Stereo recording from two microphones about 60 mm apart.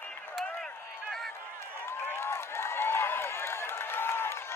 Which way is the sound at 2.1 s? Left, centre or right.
Left.